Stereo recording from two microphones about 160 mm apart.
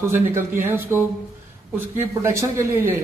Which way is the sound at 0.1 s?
15° right (ahead or behind).